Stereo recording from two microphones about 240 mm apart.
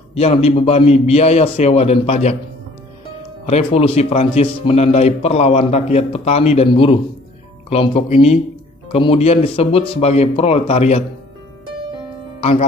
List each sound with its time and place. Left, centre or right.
0.1 s a man's voice: left
3.4 s a man's voice: left
12.4 s speech: left